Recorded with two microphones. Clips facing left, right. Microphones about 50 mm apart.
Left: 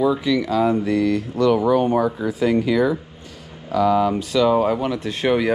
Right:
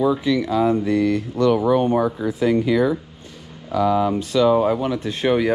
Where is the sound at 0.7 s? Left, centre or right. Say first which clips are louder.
Even; left.